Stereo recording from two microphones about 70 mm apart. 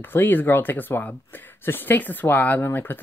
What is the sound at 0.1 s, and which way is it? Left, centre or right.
Speech, left.